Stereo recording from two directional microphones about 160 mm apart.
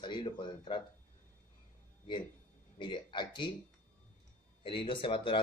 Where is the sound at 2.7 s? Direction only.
30° left (ahead or behind).